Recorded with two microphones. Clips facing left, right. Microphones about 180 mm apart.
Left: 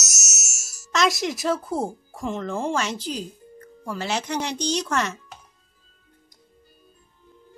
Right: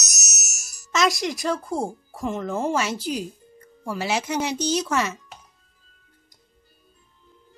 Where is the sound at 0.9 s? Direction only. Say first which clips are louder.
Even; centre (ahead or behind).